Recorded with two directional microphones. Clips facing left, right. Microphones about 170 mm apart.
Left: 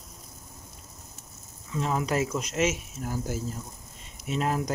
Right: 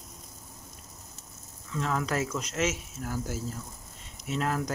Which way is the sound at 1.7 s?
15° left (ahead or behind).